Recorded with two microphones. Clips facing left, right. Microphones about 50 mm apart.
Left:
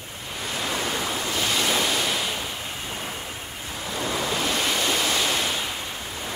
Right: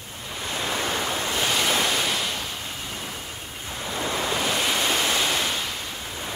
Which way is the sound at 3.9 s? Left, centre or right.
Centre.